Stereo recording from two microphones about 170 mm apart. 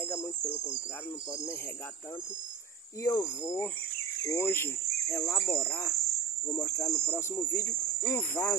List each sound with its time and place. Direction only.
0.0 s cricket: 15° left (ahead or behind)
3.0 s speech: 15° left (ahead or behind)